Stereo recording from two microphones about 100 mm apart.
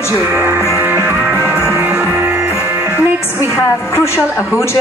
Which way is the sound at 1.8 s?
10° right (ahead or behind).